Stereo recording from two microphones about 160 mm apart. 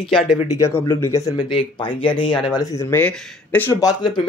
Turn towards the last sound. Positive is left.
turn(degrees=25)  # may be behind; listen again after turning